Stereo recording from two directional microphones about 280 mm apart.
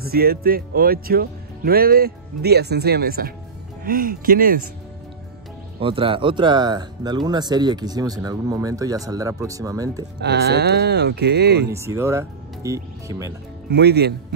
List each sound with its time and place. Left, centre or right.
0.0 s speech: right
5.8 s speech: centre
10.2 s speech: right
11.7 s speech: centre
13.7 s speech: right